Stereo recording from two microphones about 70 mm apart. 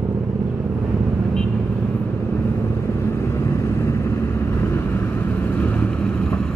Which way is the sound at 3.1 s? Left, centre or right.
Left.